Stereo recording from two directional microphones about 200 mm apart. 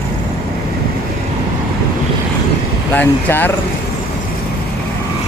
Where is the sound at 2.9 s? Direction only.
10° left (ahead or behind).